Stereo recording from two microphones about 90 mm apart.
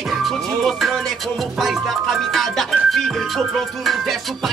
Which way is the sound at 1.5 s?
5° right (ahead or behind).